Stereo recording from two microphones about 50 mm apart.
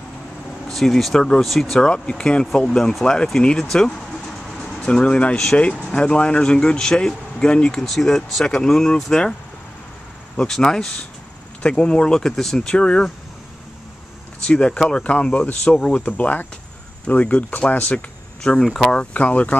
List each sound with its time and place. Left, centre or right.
0.7 s speech: centre
1.8 s speech: centre
3.7 s vehicle: centre
4.7 s speech: centre
7.8 s speech: centre
10.5 s speech: centre
14.4 s speech: left